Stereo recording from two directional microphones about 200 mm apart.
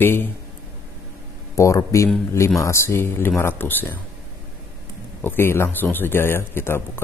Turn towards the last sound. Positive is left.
turn(degrees=10)  # may be behind; listen again after turning